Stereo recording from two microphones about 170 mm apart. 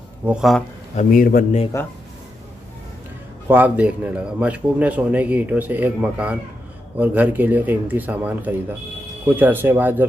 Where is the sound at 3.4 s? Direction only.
10° right (ahead or behind).